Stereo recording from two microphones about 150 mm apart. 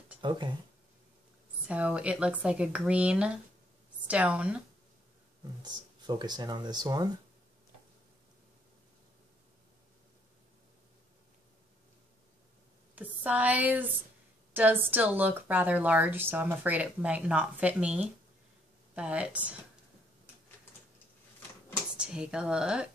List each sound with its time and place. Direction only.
0.2 s speech: 30° right (ahead or behind)
1.7 s speech: 10° right (ahead or behind)
5.6 s speech: 25° right (ahead or behind)
12.9 s a sound: 10° right (ahead or behind)
14.5 s speech: 15° right (ahead or behind)
21.9 s speech: 5° right (ahead or behind)